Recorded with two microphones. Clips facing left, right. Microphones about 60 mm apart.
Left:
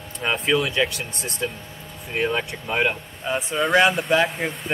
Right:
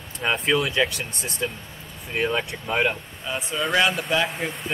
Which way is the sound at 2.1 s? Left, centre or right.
Centre.